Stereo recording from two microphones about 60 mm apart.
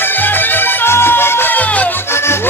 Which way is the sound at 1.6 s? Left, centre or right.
Left.